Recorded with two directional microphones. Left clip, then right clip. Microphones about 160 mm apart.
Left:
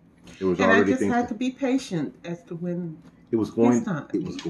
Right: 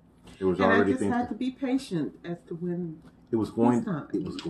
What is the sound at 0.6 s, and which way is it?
Speech, 25° left (ahead or behind).